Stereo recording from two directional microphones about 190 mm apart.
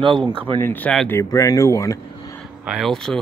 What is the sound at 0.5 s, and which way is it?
Speech, 10° left (ahead or behind).